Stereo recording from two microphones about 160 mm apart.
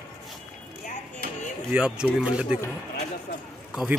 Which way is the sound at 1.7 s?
5° right (ahead or behind).